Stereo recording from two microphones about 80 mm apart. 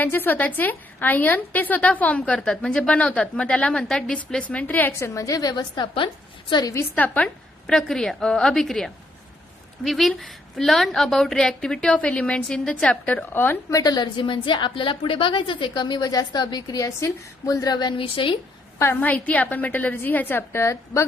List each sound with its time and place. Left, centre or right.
0.0 s a woman's voice: left
7.6 s a woman's voice: centre; by 13.7 s left
13.7 s a woman's voice: left
14.1 s a woman's voice: left
18.8 s a woman's voice: left